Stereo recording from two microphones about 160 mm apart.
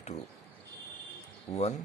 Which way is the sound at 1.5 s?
45° left (ahead or behind).